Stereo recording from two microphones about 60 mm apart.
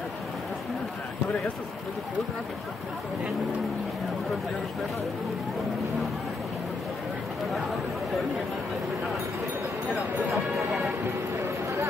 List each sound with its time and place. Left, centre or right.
9.9 s speech: centre
11.1 s speech: right